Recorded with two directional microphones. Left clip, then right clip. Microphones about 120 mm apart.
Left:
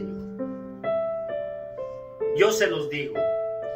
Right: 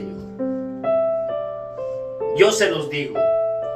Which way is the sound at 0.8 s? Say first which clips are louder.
Right 7 dB; 40° right (ahead or behind).